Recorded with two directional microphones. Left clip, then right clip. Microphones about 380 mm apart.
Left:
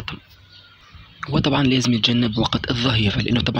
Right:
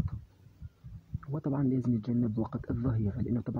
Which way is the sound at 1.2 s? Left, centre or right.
Right.